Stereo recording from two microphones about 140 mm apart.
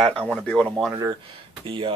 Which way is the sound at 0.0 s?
5° left (ahead or behind).